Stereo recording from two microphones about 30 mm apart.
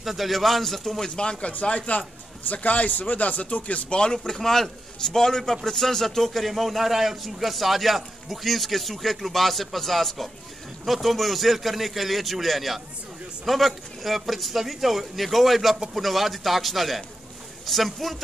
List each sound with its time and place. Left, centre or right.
0.0 s a man's voice: centre
1.0 s a man's voice: left
1.6 s a man's voice: left
3.9 s a man's voice: left; by 18.1 s centre